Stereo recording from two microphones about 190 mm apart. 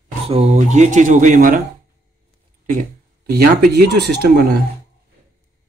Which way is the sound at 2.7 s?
50° right (ahead or behind).